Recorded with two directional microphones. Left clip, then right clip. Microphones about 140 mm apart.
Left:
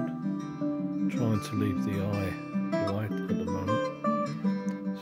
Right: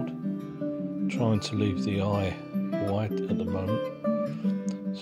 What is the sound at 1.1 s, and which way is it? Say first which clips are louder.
Speech: right 2 dB; 25° right (ahead or behind).